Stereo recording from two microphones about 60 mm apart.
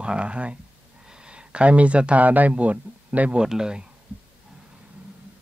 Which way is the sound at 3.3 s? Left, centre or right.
Centre.